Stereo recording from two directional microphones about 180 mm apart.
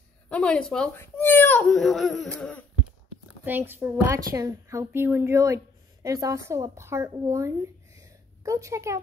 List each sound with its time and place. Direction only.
0.3 s speech: 5° left (ahead or behind)
3.4 s a woman's voice: 10° right (ahead or behind)